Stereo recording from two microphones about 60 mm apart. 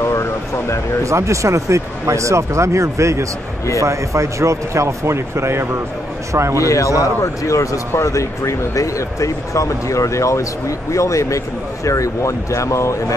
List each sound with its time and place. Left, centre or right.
0.0 s a sound: left
1.0 s speech: right
6.6 s speech: left